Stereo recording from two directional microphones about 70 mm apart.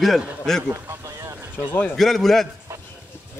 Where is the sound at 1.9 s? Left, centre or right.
Centre.